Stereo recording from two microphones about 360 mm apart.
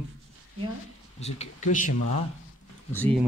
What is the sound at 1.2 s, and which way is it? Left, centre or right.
Speech, centre.